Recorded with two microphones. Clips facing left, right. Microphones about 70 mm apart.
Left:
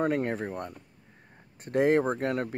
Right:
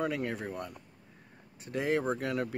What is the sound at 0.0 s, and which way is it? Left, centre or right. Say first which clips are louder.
Speech: left 5 dB; left.